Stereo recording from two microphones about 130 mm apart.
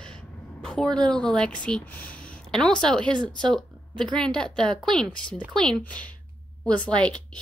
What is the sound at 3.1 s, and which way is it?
Speech, 35° right (ahead or behind).